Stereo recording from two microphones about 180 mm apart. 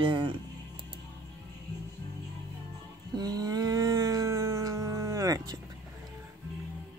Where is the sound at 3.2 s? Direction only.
20° right (ahead or behind).